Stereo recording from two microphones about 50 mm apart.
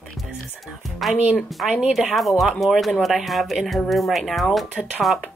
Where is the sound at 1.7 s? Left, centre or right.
Centre.